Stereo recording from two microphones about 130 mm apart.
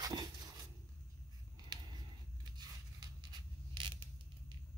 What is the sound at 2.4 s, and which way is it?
Zipper, 30° right (ahead or behind).